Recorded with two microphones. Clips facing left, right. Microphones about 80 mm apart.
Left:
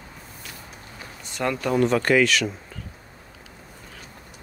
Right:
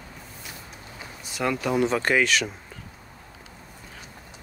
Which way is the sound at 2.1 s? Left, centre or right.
Right.